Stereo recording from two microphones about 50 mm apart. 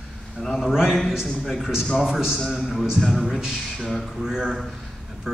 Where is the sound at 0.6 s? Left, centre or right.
Centre.